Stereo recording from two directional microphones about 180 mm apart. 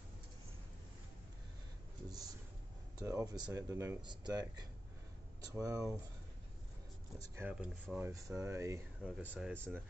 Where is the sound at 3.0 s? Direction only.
20° right (ahead or behind).